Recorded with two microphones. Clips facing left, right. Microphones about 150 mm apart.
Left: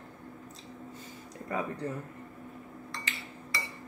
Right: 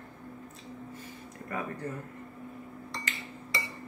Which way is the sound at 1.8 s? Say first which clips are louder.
Left 1 dB; 15° left (ahead or behind).